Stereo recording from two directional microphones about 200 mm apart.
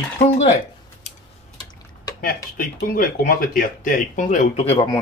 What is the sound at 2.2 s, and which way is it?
Speech, 45° left (ahead or behind).